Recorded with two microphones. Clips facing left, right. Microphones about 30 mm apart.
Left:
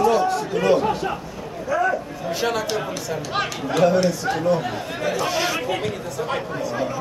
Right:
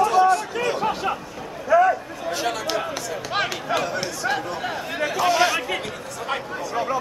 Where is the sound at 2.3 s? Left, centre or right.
Centre.